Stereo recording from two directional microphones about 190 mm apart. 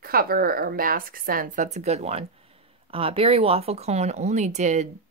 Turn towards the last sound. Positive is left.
turn(degrees=-40)  # may be behind; listen again after turning